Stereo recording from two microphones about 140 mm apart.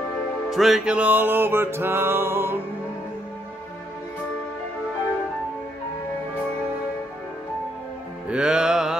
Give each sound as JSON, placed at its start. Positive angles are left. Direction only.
{"t": 0.5, "sound": "music", "side_deg": 0}
{"t": 8.3, "sound": "music", "side_deg": -5}